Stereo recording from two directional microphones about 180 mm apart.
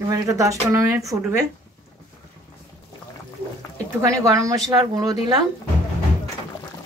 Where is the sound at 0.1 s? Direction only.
20° right (ahead or behind).